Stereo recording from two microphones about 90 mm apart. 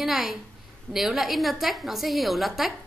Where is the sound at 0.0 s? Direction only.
5° right (ahead or behind).